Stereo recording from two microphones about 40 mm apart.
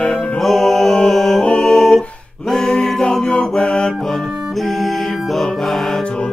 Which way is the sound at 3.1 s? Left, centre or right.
Centre.